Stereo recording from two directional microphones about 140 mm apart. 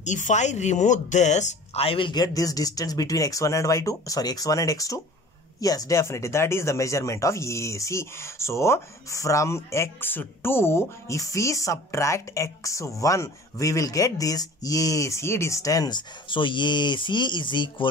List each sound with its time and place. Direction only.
0.0 s speech: 60° left (ahead or behind); by 17.8 s 35° left (ahead or behind)